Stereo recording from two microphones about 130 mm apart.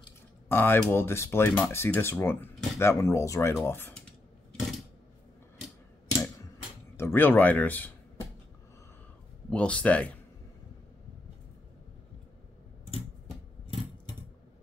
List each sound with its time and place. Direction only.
0.5 s speech: 15° left (ahead or behind)
4.6 s a sound: centre (ahead or behind)
7.0 s speech: 15° left (ahead or behind)
9.5 s speech: 10° left (ahead or behind)